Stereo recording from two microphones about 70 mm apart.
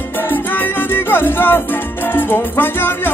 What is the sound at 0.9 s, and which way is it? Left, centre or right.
Music, left.